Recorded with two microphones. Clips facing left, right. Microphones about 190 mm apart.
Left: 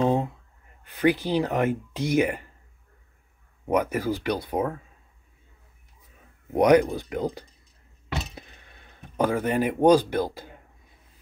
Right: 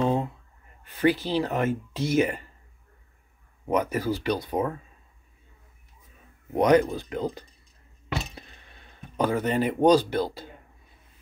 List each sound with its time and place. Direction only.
0.0 s a sound: 15° left (ahead or behind)
1.0 s speech: 15° left (ahead or behind)
3.6 s speech: 15° left (ahead or behind)
6.5 s speech: 10° left (ahead or behind)
9.1 s speech: 10° left (ahead or behind)